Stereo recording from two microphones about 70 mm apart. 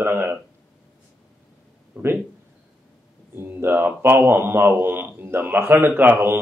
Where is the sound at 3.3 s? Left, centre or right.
Right.